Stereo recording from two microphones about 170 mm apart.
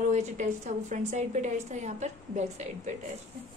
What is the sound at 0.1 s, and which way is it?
A woman's voice, 45° right (ahead or behind).